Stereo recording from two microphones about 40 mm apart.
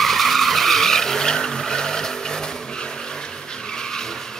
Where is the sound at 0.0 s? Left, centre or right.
Centre.